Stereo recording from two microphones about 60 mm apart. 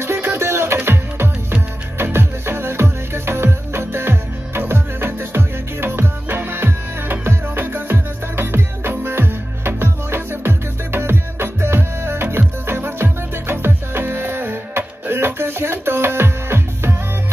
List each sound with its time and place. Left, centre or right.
0.0 s music: right